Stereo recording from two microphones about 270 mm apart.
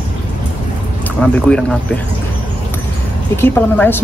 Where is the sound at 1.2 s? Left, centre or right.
Centre.